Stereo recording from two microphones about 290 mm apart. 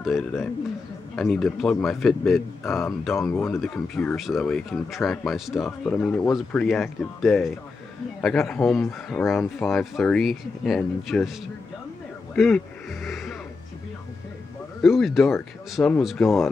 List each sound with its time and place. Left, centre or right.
0.0 s speech: centre
12.4 s music: centre
14.8 s speech: centre